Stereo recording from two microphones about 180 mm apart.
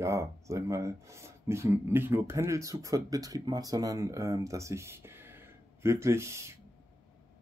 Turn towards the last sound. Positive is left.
turn(degrees=-15)  # may be behind; listen again after turning